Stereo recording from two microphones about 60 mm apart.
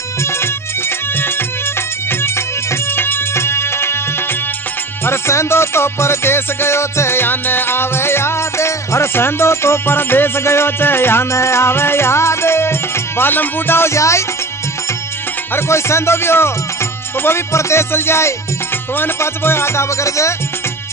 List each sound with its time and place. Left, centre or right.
0.2 s music: left
13.9 s music: left
15.5 s music: left